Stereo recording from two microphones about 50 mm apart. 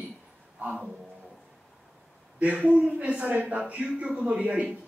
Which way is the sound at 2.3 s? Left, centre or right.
Right.